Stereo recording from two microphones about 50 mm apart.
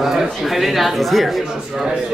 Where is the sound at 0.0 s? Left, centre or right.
Centre.